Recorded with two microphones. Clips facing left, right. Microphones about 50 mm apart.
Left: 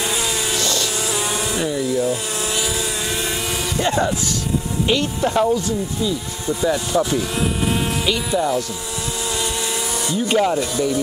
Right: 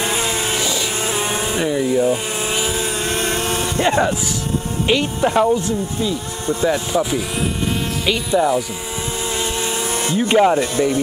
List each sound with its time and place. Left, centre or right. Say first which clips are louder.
0.0 s vehicle: right 2 dB; right
0.6 s music: right 1 dB; centre
0.9 s vehicle: right 2 dB; right
3.6 s music: right 2 dB; right
4.8 s speech: right 3 dB; centre
6.4 s speech: right 2 dB; right
6.7 s speech: even; centre
9.3 s a sound: right 2 dB; right